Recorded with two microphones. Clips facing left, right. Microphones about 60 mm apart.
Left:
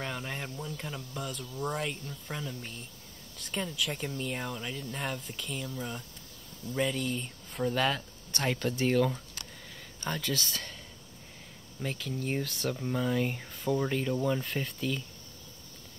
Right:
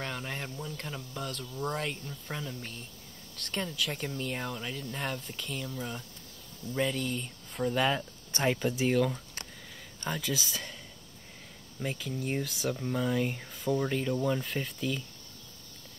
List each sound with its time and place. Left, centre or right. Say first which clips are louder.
0.0 s speech: even; centre
8.3 s speech: right 3 dB; right
8.5 s speech: left 3 dB; centre
11.8 s speech: even; centre